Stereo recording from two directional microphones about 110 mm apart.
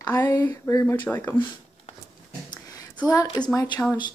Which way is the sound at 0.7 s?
30° left (ahead or behind).